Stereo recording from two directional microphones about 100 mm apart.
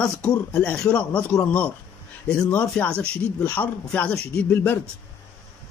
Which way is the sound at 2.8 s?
10° left (ahead or behind).